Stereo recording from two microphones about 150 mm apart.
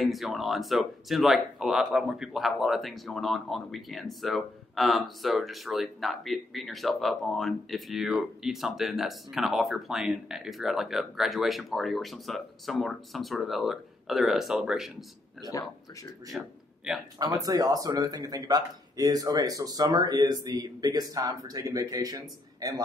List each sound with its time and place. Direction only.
0.0 s speech: centre (ahead or behind)
16.3 s a man's voice: 5° right (ahead or behind)
17.2 s speech: 25° right (ahead or behind)